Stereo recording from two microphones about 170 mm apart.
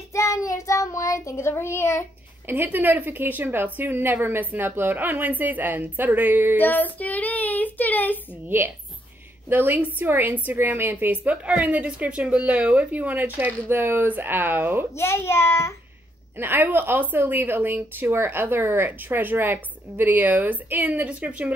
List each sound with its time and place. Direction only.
0.1 s child singing: 15° left (ahead or behind)
2.4 s a woman's voice: 10° right (ahead or behind)
6.6 s speech: 10° left (ahead or behind)
9.5 s a woman's voice: 10° right (ahead or behind)
15.0 s a child's voice: 15° left (ahead or behind)
16.3 s a woman's voice: 10° right (ahead or behind)